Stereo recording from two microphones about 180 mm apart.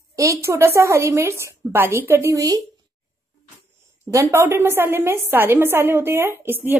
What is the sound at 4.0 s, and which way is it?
A woman's voice, 15° right (ahead or behind).